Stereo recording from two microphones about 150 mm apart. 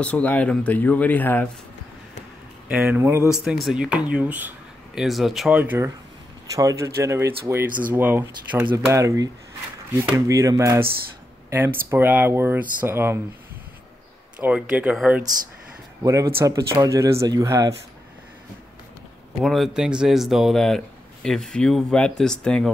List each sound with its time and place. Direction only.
0.0 s speech: 10° left (ahead or behind)
2.8 s speech: 15° right (ahead or behind)
3.3 s speech: centre (ahead or behind)
5.6 s speech: 15° right (ahead or behind)
14.4 s speech: 10° right (ahead or behind)
16.0 s speech: 20° right (ahead or behind)
19.4 s speech: centre (ahead or behind)